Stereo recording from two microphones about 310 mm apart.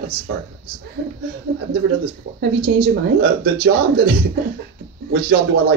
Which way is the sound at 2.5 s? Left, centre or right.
Right.